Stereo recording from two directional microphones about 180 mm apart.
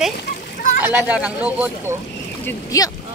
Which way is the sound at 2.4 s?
20° left (ahead or behind).